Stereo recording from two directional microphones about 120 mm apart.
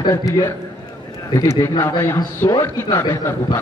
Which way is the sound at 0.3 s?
25° left (ahead or behind).